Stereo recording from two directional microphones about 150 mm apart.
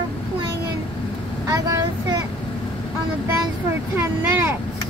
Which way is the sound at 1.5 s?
25° right (ahead or behind).